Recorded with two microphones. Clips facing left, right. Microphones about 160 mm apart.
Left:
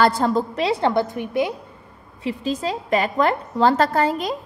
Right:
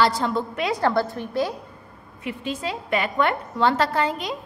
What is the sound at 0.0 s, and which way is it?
A woman's voice, 45° left (ahead or behind).